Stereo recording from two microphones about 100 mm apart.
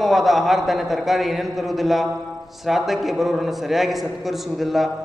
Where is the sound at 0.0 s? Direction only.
Centre (ahead or behind).